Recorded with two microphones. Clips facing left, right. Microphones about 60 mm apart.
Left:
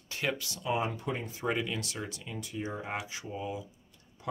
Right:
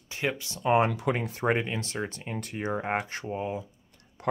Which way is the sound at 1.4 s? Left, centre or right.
Right.